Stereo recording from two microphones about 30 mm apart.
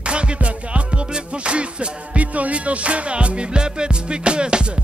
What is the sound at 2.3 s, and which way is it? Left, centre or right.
Music, right.